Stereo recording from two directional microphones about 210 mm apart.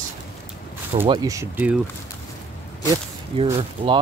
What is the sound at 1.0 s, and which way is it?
Speech, 20° right (ahead or behind).